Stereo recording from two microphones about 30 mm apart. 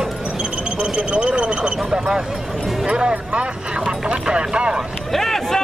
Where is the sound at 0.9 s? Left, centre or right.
Right.